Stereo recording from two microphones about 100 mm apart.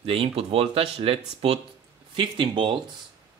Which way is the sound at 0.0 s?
70° right (ahead or behind).